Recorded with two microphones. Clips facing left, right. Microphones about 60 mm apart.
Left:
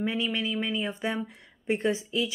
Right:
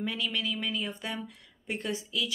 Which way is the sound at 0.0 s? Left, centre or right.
Left.